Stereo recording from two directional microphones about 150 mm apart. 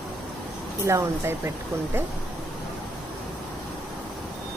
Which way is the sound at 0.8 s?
20° right (ahead or behind).